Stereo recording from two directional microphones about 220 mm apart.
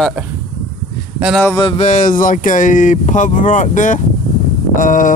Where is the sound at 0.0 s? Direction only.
5° right (ahead or behind).